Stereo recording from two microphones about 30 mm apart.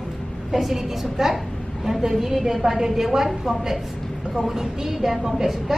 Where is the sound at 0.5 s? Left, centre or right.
Centre.